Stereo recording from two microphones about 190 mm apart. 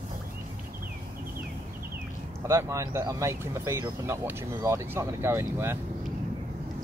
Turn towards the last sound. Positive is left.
turn(degrees=-15)  # may be behind; listen again after turning